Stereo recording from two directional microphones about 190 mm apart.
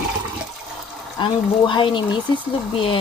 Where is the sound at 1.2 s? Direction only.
25° left (ahead or behind).